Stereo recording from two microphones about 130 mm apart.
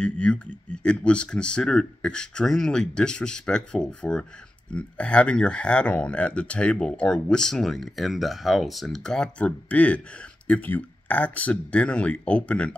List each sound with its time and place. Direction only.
0.0 s speech: 5° left (ahead or behind)